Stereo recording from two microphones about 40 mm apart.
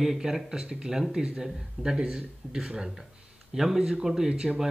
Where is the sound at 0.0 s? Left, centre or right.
Centre.